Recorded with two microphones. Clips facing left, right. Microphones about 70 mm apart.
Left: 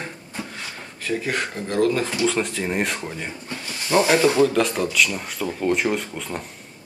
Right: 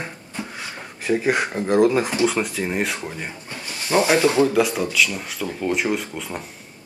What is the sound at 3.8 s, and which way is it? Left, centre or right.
Rub, centre.